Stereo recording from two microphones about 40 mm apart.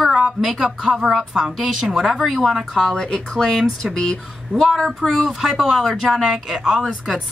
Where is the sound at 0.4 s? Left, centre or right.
Centre.